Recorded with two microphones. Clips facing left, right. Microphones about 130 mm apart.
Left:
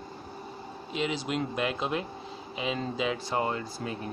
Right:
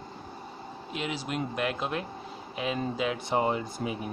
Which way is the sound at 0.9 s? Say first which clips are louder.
Left 3 dB; 5° right (ahead or behind).